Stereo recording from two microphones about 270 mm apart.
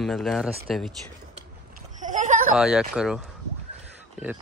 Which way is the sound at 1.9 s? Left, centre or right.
Right.